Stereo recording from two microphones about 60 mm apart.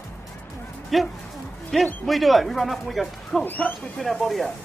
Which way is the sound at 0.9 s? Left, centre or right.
Centre.